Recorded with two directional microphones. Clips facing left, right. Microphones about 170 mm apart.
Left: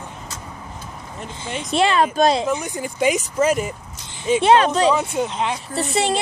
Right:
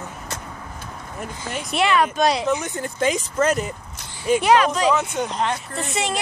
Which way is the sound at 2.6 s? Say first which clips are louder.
Left 1 dB; 15° left (ahead or behind).